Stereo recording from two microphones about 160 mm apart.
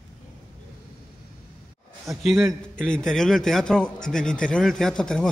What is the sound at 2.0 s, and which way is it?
A man's voice, centre (ahead or behind).